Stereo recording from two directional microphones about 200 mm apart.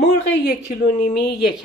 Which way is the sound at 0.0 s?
60° left (ahead or behind).